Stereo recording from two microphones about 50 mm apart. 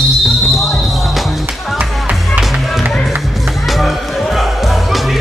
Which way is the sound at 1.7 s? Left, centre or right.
Right.